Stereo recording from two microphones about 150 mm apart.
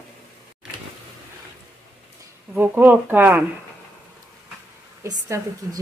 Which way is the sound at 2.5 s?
10° right (ahead or behind).